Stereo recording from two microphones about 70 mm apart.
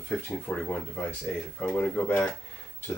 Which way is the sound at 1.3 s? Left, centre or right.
Centre.